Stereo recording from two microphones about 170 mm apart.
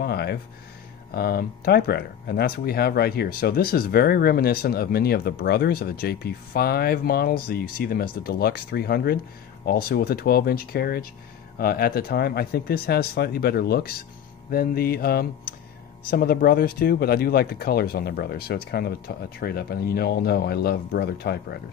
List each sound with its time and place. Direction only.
0.0 s speech: 70° left (ahead or behind)